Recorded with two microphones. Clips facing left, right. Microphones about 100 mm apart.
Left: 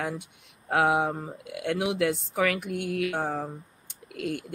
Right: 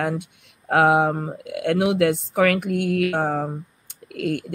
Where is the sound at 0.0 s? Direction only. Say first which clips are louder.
Right 7 dB; 65° right (ahead or behind).